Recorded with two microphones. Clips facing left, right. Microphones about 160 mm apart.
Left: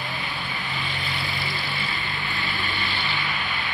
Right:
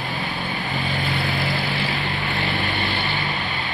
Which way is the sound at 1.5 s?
75° right (ahead or behind).